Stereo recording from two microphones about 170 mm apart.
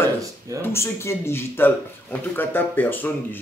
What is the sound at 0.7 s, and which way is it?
Speech, 15° left (ahead or behind).